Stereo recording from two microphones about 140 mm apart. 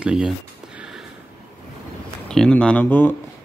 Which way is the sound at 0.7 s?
5° right (ahead or behind).